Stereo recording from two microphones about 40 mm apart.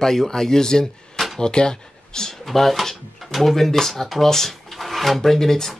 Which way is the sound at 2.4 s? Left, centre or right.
Centre.